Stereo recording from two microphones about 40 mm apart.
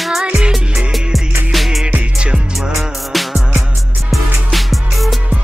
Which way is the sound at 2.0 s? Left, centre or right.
Right.